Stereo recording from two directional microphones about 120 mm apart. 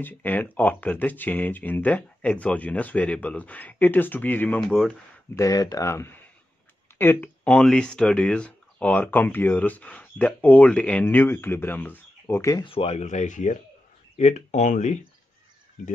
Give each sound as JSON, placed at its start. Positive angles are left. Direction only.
{"t": 0.0, "sound": "speech", "side_deg": 15}
{"t": 4.6, "sound": "speech", "side_deg": 5}
{"t": 5.3, "sound": "speech", "side_deg": 25}
{"t": 12.6, "sound": "speech", "side_deg": 55}
{"t": 14.1, "sound": "speech", "side_deg": 70}